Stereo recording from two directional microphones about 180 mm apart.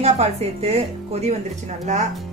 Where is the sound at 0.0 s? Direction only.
35° right (ahead or behind).